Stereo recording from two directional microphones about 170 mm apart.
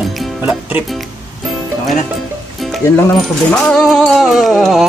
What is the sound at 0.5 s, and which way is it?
Speech, 10° right (ahead or behind).